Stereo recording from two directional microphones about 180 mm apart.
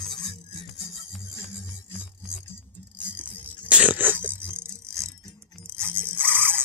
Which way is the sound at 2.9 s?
5° right (ahead or behind).